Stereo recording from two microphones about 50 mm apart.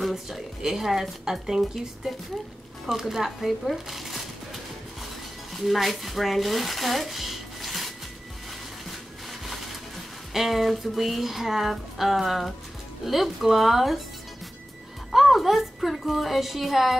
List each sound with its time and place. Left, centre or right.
0.0 s speech: centre
5.5 s speech: centre
10.3 s speech: centre
15.0 s speech: centre